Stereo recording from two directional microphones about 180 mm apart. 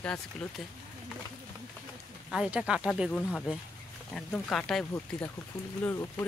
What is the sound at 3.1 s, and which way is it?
Speech, 10° left (ahead or behind).